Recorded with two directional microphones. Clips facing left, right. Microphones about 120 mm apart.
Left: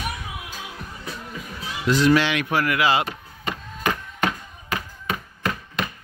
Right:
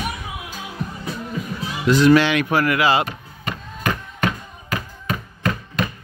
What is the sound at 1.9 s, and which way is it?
Speech, 60° right (ahead or behind).